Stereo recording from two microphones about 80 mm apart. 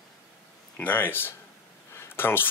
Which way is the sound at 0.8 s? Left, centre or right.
Left.